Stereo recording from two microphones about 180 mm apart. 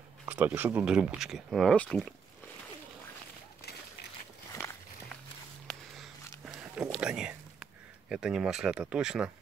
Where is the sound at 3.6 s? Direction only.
65° left (ahead or behind).